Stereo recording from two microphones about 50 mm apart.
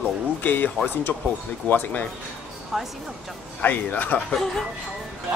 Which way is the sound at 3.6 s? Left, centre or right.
Left.